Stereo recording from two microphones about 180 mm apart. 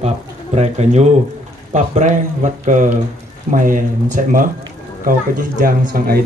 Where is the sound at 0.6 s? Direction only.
40° right (ahead or behind).